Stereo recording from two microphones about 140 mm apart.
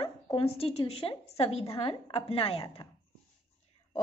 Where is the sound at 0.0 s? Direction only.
45° left (ahead or behind).